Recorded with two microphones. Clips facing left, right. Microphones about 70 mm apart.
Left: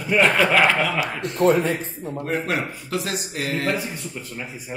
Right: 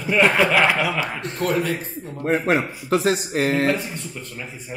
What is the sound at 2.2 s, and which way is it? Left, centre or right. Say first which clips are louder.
A man's voice: right 5 dB; right.